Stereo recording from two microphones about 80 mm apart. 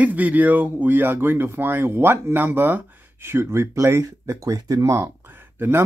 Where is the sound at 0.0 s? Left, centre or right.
Centre.